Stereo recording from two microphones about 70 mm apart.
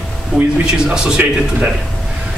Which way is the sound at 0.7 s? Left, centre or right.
Centre.